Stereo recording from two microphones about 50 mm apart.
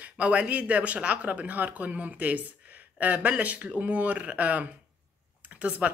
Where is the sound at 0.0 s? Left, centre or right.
Right.